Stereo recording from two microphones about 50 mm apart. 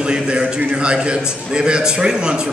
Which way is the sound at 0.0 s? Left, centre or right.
Centre.